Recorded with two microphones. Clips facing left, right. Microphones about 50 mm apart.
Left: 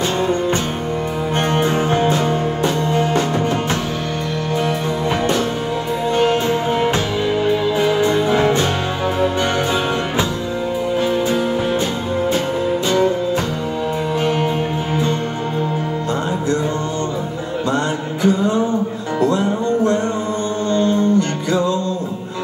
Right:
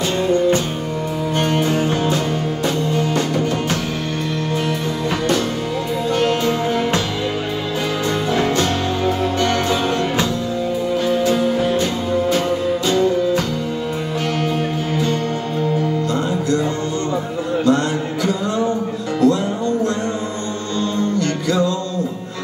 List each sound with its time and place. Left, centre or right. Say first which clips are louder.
0.2 s music: right 2 dB; left
6.1 s music: left 2 dB; left
8.3 s music: left 2 dB; left
11.0 s music: right 1 dB; left
14.2 s music: left 3 dB; left
19.1 s music: right 1 dB; left